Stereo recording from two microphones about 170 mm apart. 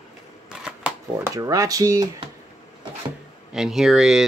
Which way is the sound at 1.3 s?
20° right (ahead or behind).